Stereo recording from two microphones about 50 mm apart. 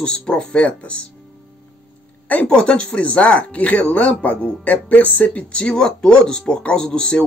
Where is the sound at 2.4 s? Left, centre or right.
Left.